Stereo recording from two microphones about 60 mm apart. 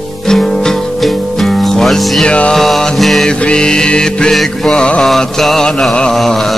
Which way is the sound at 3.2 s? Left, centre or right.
Centre.